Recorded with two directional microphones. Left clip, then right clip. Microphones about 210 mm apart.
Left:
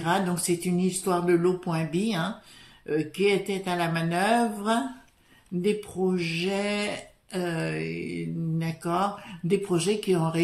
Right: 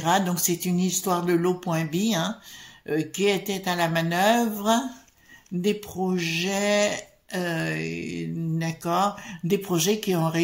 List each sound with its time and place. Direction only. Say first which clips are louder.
0.0 s speech: right 3 dB; 35° right (ahead or behind)